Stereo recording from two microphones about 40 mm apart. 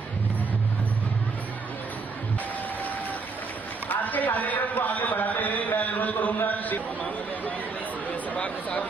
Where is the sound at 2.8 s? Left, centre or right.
Left.